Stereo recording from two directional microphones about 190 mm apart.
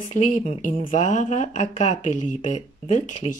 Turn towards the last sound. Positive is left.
turn(degrees=40)  # may be behind; listen again after turning